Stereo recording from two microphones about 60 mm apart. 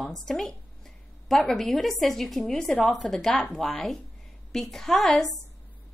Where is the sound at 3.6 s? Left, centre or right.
Left.